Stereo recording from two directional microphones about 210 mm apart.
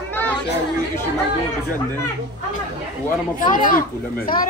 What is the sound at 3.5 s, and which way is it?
Speech, 40° left (ahead or behind).